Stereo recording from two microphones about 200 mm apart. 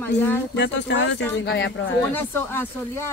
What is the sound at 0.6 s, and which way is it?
Speech, 65° left (ahead or behind).